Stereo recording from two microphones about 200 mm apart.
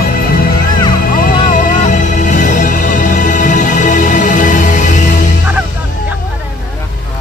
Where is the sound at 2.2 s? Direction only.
40° left (ahead or behind).